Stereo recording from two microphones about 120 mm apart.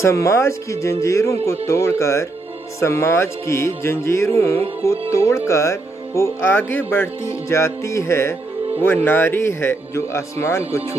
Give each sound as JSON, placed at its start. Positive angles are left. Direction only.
{"t": 0.0, "sound": "speech", "side_deg": 25}